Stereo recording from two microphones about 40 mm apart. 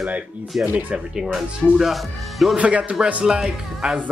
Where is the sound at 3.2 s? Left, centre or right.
Centre.